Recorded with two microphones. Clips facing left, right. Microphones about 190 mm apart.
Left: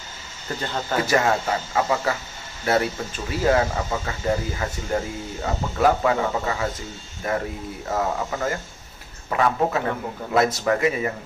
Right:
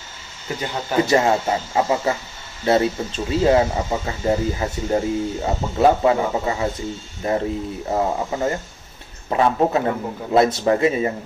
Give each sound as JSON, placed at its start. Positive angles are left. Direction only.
{"t": 0.5, "sound": "speech", "side_deg": -15}